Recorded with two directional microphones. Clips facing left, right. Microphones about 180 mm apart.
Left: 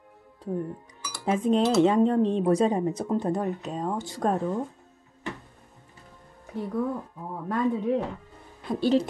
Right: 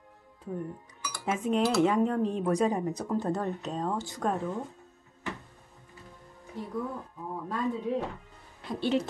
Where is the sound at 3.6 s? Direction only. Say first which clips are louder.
Left 2 dB; 5° left (ahead or behind).